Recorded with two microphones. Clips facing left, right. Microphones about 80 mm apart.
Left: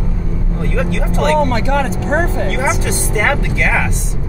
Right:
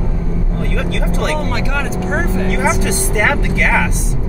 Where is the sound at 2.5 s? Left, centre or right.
Centre.